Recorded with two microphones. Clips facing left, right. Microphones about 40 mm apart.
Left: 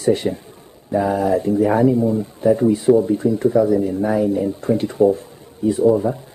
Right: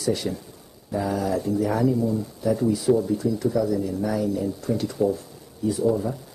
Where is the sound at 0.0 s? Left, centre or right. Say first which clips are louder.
Left 7 dB; left.